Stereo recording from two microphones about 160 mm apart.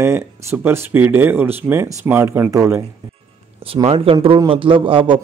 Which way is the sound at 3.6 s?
35° right (ahead or behind).